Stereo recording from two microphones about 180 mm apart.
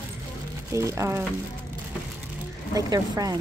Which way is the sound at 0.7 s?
15° right (ahead or behind).